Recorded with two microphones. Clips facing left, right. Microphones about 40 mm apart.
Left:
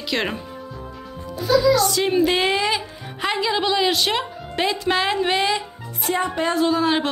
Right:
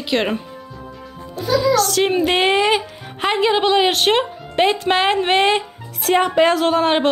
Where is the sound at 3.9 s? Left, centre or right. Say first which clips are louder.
Right 5 dB; right.